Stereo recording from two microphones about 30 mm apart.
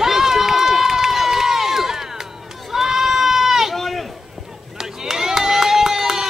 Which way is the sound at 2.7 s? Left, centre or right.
Centre.